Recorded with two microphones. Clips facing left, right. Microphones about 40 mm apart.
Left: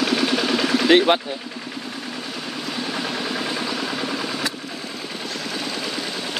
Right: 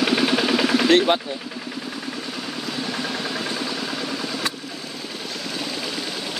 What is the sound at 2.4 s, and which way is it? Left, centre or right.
Vehicle, centre.